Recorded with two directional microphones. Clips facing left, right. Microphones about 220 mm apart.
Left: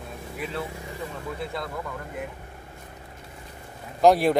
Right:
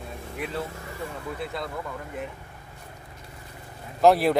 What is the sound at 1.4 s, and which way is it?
Speech, centre (ahead or behind).